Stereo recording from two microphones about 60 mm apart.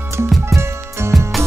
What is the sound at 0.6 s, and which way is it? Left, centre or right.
Music, right.